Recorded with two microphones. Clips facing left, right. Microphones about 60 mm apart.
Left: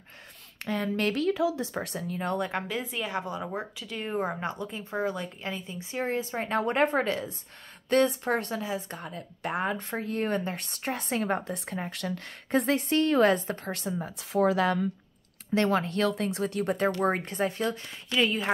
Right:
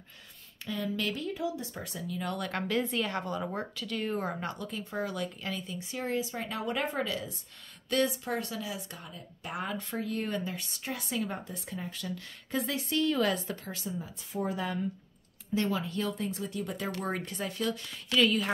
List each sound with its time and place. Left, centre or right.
0.6 s a woman's voice: left
1.1 s speech: left
2.0 s speech: left
2.7 s speech: centre; by 9.0 s left
9.0 s a woman's voice: left
11.2 s a woman's voice: left
13.7 s speech: left
14.3 s speech: left
15.5 s speech: left
17.0 s speech: left
18.2 s speech: left